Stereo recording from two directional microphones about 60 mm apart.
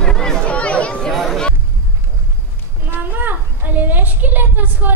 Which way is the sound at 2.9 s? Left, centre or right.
Right.